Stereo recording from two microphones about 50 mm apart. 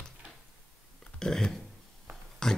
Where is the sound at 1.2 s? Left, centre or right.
Centre.